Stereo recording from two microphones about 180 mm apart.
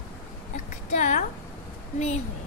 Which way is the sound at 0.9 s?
45° left (ahead or behind).